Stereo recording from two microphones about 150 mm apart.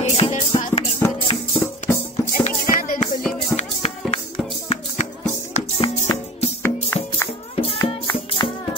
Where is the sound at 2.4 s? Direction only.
65° left (ahead or behind).